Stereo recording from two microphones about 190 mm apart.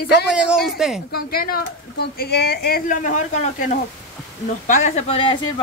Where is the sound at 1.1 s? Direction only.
50° left (ahead or behind).